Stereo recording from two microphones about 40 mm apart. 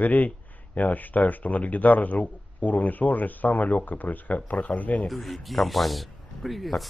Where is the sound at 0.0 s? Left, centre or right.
Left.